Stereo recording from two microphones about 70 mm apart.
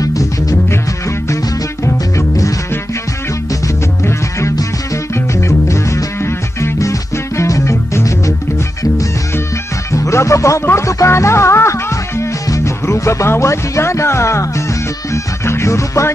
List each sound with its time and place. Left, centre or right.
0.0 s music: left
3.6 s music: left
9.9 s music: left